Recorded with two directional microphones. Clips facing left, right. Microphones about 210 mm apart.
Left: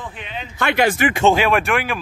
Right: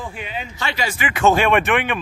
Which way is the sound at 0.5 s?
55° left (ahead or behind).